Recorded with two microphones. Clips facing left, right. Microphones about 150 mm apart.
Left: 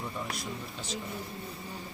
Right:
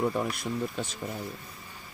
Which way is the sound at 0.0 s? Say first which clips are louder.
Right 8 dB; 60° right (ahead or behind).